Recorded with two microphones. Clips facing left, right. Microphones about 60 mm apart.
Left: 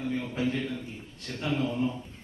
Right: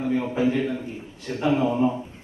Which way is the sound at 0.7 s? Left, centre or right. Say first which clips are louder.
Right 7 dB; right.